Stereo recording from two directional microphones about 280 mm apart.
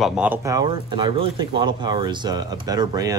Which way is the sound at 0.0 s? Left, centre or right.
Centre.